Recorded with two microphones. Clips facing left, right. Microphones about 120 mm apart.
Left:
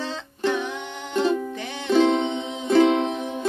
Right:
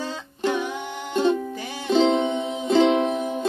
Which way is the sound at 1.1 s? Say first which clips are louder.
Right 1 dB; 30° right (ahead or behind).